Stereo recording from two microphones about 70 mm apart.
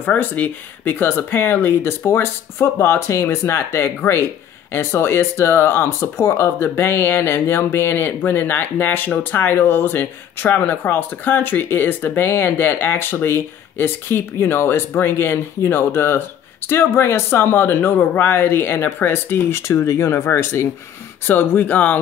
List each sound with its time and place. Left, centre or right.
0.0 s speech: left
21.3 s speech: left